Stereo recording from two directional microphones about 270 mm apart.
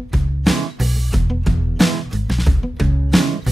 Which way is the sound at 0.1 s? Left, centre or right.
Centre.